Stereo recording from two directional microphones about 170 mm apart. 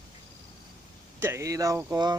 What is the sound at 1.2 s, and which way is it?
Speech, 15° right (ahead or behind).